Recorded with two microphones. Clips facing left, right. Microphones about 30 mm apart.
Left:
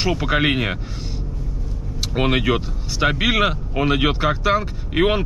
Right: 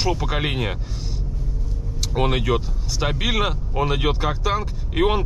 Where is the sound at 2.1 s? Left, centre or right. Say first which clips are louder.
Left 2 dB; centre.